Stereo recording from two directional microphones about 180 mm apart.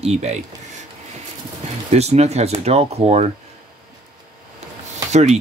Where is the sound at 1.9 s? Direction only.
35° right (ahead or behind).